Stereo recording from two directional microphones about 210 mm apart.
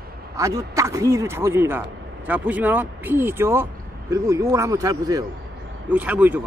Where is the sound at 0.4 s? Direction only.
15° right (ahead or behind).